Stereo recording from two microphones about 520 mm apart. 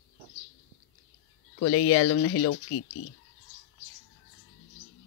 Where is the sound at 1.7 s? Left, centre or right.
Left.